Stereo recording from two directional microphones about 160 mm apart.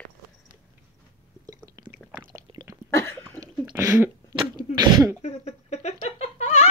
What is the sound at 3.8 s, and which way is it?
Cough, 15° right (ahead or behind).